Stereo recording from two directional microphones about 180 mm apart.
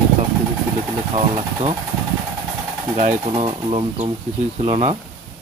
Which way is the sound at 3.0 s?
35° right (ahead or behind).